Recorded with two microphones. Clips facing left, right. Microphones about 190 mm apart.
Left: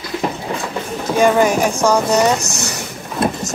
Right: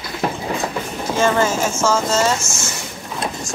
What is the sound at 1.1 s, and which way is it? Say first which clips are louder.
Speech: left 4 dB; 15° left (ahead or behind).